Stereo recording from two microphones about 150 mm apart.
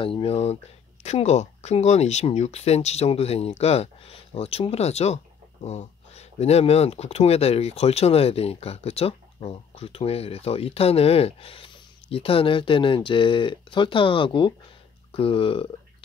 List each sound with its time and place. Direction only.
0.0 s speech: 40° left (ahead or behind)